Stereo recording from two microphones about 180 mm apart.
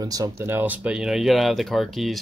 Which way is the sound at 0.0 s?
20° right (ahead or behind).